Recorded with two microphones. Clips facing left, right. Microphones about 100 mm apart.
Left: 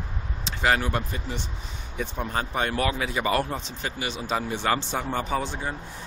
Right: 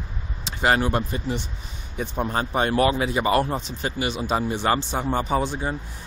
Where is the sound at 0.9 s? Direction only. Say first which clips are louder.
Right 5 dB; 10° right (ahead or behind).